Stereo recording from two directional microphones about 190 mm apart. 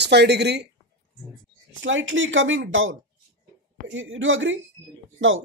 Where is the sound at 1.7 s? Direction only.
90° right.